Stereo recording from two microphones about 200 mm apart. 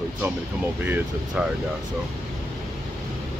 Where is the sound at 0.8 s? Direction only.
10° right (ahead or behind).